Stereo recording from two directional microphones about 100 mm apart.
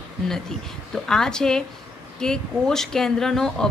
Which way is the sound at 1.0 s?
5° left (ahead or behind).